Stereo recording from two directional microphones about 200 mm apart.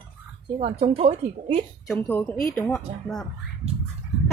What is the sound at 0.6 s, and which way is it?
A woman's voice, 30° right (ahead or behind).